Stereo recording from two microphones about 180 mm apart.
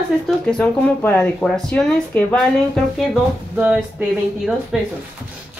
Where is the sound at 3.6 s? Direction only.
5° right (ahead or behind).